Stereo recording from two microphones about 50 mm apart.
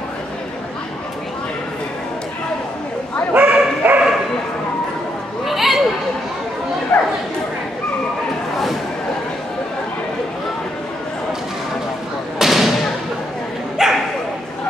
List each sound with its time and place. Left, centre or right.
3.3 s bow-wow: right
5.4 s a sound: centre
6.9 s bow-wow: left
12.4 s thump: centre
13.8 s bow-wow: centre